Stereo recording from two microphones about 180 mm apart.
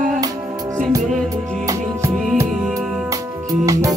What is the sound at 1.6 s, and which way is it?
Music, 20° right (ahead or behind).